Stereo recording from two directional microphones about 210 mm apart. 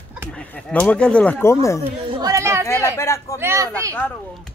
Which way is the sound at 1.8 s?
20° right (ahead or behind).